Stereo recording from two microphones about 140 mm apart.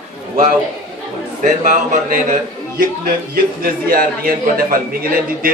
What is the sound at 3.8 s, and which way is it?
A man's voice, 90° right.